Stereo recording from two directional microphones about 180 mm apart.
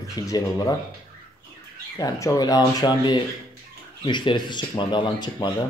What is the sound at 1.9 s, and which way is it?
Speech, 20° left (ahead or behind).